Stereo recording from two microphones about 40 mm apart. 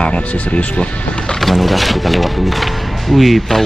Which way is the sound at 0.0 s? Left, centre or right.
Left.